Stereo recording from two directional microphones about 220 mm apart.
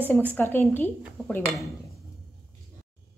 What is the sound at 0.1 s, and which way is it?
A woman's voice, 10° left (ahead or behind).